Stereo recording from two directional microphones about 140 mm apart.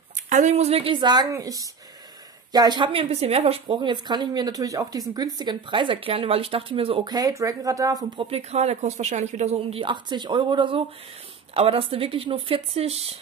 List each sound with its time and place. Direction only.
0.3 s a woman's voice: 55° right (ahead or behind); by 7.2 s 40° right (ahead or behind)
7.2 s speech: 25° right (ahead or behind)
8.2 s speech: 45° right (ahead or behind)